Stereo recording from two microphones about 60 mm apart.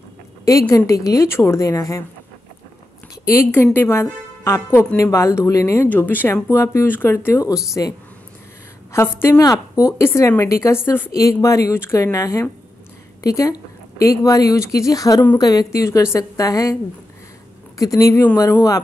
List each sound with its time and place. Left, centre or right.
0.5 s a woman's voice: left
1.6 s a woman's voice: left
3.3 s a woman's voice: left
3.7 s a woman's voice: left
5.9 s speech: left
7.4 s a woman's voice: left
9.8 s a woman's voice: left
11.1 s a woman's voice: left
11.7 s a woman's voice: left
12.0 s a woman's voice: left
15.3 s a woman's voice: left
16.2 s a woman's voice: left
17.7 s a woman's voice: left
18.4 s a woman's voice: left